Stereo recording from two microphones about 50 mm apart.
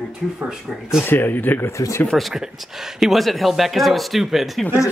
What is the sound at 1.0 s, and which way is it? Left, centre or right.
Speech, left.